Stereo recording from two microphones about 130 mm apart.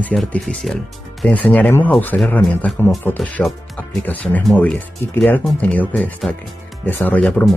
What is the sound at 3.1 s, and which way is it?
Speech, 5° left (ahead or behind).